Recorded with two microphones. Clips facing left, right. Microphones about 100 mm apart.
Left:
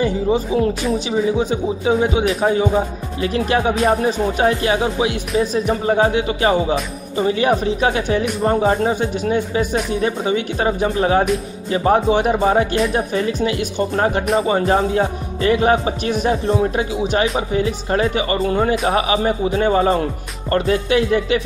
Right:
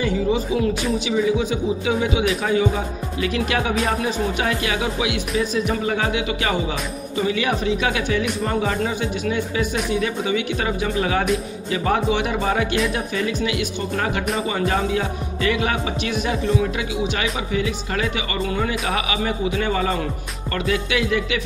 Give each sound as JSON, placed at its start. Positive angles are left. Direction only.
{"t": 0.0, "sound": "speech", "side_deg": 35}